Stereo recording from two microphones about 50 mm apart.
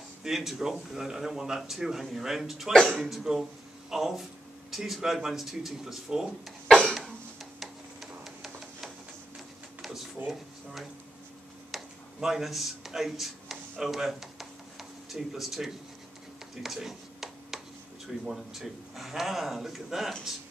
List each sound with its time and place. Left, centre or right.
0.2 s speech: centre
2.7 s speech: centre
3.3 s speech: centre
7.6 s printer: centre
9.8 s a sound: centre
10.2 s speech: centre
11.7 s a sound: centre
18.2 s speech: centre